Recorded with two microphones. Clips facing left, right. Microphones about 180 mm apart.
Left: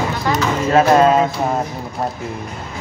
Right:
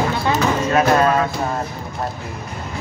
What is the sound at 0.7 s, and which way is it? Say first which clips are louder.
Music: left 5 dB; 25° left (ahead or behind).